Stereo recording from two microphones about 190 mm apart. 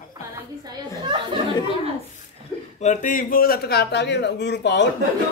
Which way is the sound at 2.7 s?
40° left (ahead or behind).